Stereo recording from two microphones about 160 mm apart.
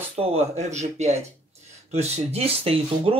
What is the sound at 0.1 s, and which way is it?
Speech, 40° right (ahead or behind).